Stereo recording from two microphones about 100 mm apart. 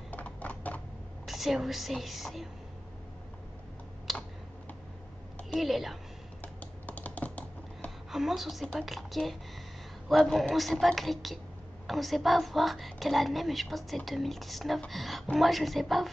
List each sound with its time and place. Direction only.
0.1 s typing: 15° left (ahead or behind)
1.2 s a woman's voice: centre (ahead or behind)
4.1 s computer keyboard: centre (ahead or behind)
5.6 s a woman's voice: centre (ahead or behind)
6.4 s computer keyboard: 15° left (ahead or behind)
8.1 s a woman's voice: 5° right (ahead or behind)